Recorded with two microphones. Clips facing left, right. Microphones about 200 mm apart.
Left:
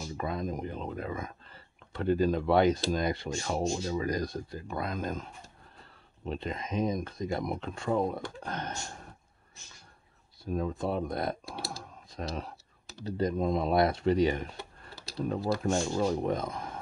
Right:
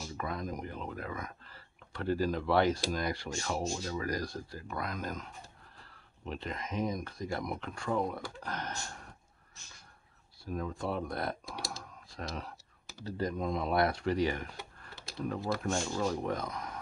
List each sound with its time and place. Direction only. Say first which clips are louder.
0.2 s speech: left 4 dB; 25° left (ahead or behind)
10.4 s speech: left 5 dB; 20° left (ahead or behind)
15.0 s typing: left 5 dB; 20° right (ahead or behind)
15.2 s speech: left 4 dB; 25° left (ahead or behind)